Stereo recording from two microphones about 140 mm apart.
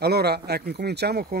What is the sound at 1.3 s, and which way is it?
Speech, 90° right.